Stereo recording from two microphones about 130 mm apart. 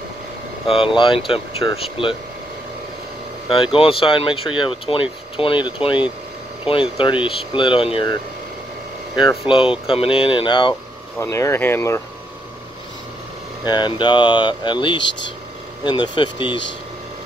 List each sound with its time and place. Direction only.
0.7 s speech: 45° left (ahead or behind)
3.4 s speech: 45° left (ahead or behind)
9.5 s speech: 45° left (ahead or behind)
11.1 s speech: 20° left (ahead or behind)
13.7 s speech: 35° left (ahead or behind)